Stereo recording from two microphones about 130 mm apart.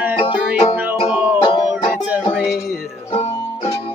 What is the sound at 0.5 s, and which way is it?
Music, 50° left (ahead or behind).